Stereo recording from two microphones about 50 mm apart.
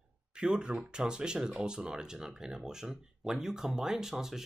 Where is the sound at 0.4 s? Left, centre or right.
Centre.